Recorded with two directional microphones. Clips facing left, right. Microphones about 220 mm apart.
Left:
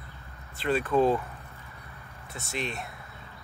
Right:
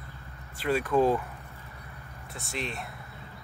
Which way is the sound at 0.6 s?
10° right (ahead or behind).